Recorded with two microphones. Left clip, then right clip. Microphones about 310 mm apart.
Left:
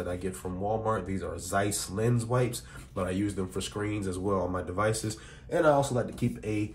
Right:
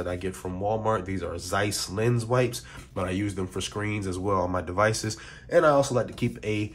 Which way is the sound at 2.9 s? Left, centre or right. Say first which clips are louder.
Right 2 dB; right.